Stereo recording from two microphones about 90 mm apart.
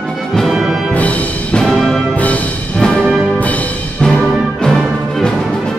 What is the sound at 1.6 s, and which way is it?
Music, 5° left (ahead or behind).